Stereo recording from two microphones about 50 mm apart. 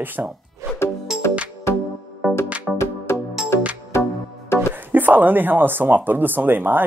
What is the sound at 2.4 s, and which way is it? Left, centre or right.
Music, right.